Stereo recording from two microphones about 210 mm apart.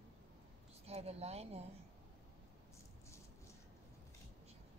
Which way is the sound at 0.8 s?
30° right (ahead or behind).